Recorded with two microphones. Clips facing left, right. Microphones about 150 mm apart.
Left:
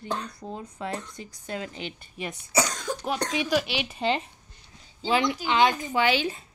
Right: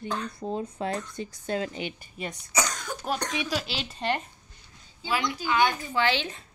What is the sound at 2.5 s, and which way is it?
Cough, 30° left (ahead or behind).